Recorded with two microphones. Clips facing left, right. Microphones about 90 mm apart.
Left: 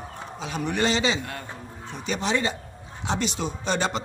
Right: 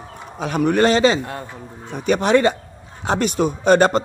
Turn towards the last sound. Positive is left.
turn(degrees=-50)  # may be behind; listen again after turning